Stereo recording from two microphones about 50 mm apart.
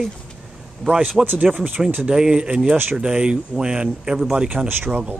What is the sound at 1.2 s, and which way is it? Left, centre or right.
Speech, centre.